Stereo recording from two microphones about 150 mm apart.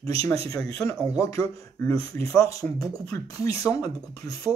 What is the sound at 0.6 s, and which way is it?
Speech, 15° left (ahead or behind).